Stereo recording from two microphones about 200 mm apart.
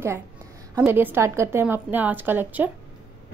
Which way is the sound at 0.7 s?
10° right (ahead or behind).